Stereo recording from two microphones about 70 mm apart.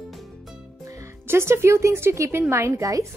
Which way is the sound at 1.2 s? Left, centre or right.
Right.